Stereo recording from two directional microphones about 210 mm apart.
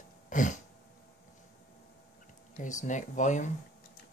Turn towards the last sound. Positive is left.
turn(degrees=35)  # may be behind; listen again after turning